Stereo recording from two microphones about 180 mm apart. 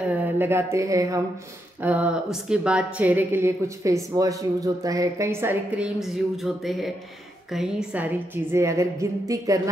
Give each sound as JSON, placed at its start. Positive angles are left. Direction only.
{"t": 0.2, "sound": "a woman's voice", "side_deg": -10}
{"t": 5.9, "sound": "a woman's voice", "side_deg": 0}